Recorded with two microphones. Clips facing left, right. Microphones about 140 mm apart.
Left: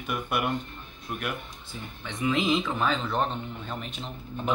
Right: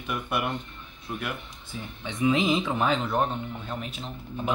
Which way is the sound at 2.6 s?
15° right (ahead or behind).